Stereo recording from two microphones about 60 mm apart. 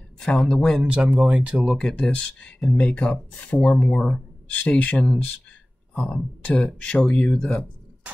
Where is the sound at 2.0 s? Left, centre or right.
Centre.